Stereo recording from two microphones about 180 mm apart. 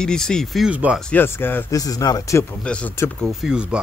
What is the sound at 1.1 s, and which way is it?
Speech, 10° left (ahead or behind).